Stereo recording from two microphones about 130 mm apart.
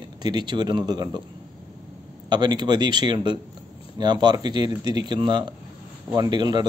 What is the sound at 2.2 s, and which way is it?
Speech, 35° right (ahead or behind).